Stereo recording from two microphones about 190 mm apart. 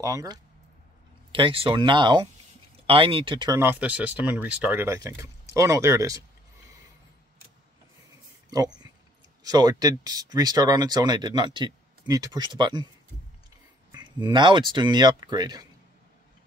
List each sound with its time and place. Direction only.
0.0 s speech: 20° right (ahead or behind)
8.5 s speech: 20° right (ahead or behind)
13.9 s speech: 25° right (ahead or behind)